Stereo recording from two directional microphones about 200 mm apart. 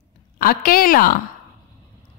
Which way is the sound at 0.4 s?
45° left (ahead or behind).